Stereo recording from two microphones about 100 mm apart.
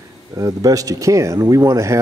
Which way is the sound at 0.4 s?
35° right (ahead or behind).